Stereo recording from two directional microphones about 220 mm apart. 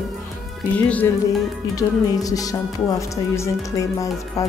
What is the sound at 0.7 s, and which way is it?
Music, 5° left (ahead or behind).